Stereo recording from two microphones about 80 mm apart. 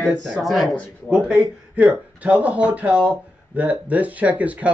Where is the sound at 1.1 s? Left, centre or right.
Centre.